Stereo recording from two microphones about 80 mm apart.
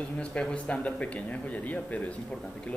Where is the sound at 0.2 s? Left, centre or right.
Centre.